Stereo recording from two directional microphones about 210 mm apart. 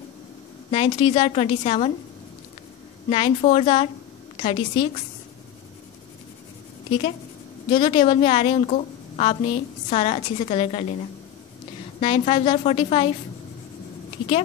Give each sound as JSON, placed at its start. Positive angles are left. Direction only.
{"t": 0.7, "sound": "a woman's voice", "side_deg": 25}
{"t": 3.1, "sound": "a woman's voice", "side_deg": 30}
{"t": 6.9, "sound": "a woman's voice", "side_deg": 30}
{"t": 12.0, "sound": "a woman's voice", "side_deg": 25}